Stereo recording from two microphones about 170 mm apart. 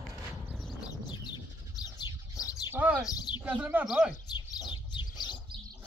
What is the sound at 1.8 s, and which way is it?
Bird, 20° left (ahead or behind).